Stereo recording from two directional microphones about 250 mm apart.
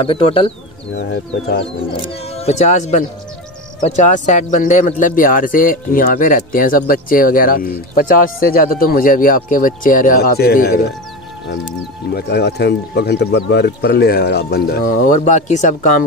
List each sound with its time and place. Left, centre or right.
0.0 s speech: left
0.9 s speech: left
1.6 s speech: left
12.1 s speech: left